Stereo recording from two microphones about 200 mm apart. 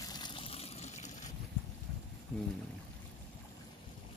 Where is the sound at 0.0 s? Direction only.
20° left (ahead or behind).